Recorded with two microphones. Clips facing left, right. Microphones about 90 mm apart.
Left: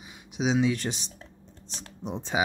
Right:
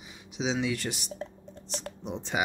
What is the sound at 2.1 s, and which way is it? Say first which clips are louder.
Speech: left 3 dB; 15° left (ahead or behind).